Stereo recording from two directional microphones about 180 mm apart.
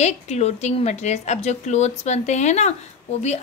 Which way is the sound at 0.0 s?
40° left (ahead or behind).